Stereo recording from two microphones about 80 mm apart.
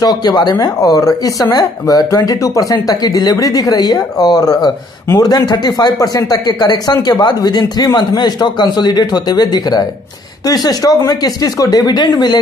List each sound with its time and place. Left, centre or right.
0.0 s speech: left